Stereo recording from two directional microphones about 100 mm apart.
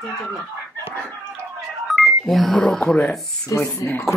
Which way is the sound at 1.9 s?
Centre (ahead or behind).